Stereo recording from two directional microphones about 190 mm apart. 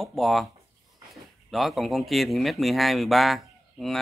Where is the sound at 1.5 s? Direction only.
Centre (ahead or behind).